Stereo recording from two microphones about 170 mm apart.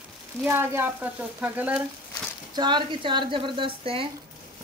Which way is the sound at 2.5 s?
25° right (ahead or behind).